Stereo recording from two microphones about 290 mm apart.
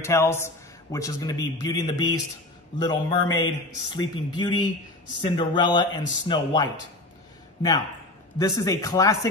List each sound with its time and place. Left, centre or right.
0.0 s speech: centre
8.4 s speech: centre